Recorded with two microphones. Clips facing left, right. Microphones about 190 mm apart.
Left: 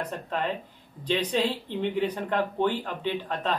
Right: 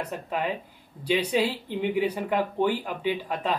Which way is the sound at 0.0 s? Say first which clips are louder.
Right 1 dB; 10° right (ahead or behind).